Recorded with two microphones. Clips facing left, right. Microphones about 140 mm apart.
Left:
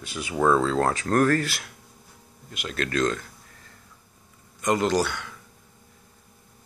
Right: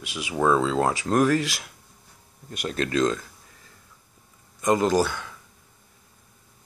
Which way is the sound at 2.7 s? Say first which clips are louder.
Right 2 dB; 20° right (ahead or behind).